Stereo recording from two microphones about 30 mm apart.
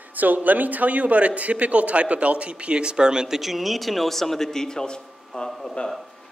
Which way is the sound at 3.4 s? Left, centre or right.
Centre.